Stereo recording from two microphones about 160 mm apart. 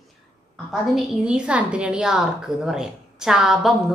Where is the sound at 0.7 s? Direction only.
5° right (ahead or behind).